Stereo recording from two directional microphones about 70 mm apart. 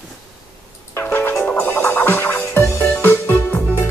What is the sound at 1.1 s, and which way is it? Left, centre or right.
Music, left.